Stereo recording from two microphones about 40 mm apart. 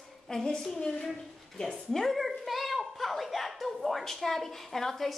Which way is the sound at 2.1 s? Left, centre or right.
Centre.